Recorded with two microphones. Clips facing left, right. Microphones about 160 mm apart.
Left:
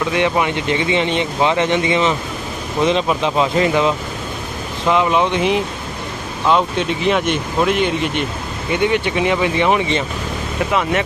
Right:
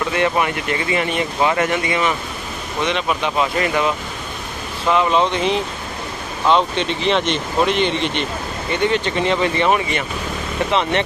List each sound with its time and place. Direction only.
0.1 s speech: 15° left (ahead or behind)
4.8 s speech: 10° left (ahead or behind)